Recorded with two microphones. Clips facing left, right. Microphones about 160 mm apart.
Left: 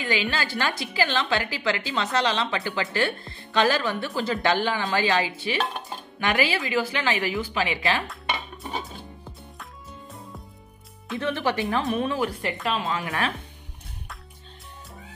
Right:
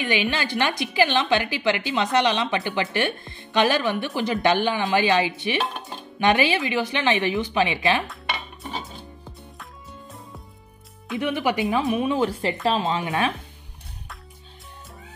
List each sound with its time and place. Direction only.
0.0 s speech: 20° right (ahead or behind)
11.1 s speech: 15° right (ahead or behind)